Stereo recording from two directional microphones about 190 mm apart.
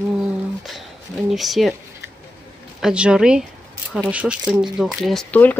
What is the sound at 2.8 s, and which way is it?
Speech, 5° right (ahead or behind).